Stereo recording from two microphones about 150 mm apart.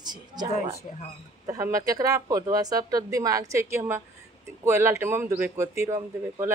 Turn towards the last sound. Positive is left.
turn(degrees=-20)  # may be behind; listen again after turning